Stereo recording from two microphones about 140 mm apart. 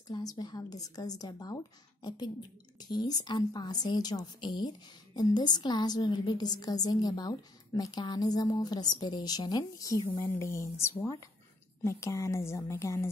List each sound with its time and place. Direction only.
0.1 s a woman's voice: 25° left (ahead or behind)
10.0 s a woman's voice: 35° left (ahead or behind)
10.4 s a woman's voice: 20° left (ahead or behind)